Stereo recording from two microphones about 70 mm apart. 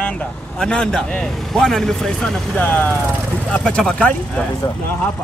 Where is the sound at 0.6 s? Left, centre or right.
Centre.